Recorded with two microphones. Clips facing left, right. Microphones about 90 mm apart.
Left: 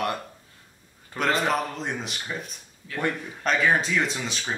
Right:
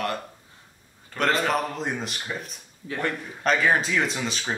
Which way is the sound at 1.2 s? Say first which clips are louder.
Right 1 dB; centre (ahead or behind).